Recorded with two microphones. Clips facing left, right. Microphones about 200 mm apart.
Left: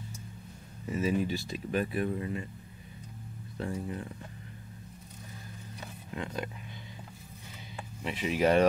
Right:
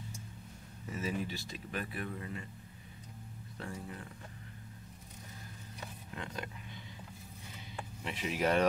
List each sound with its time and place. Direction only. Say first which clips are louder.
1.0 s speech: left 8 dB; 10° left (ahead or behind)
3.5 s speech: left 8 dB; 20° left (ahead or behind)
6.1 s speech: left 7 dB; 15° left (ahead or behind)
7.7 s speech: left 5 dB; 15° left (ahead or behind)